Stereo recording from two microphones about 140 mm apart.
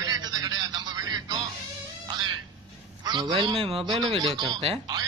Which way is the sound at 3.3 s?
40° right (ahead or behind).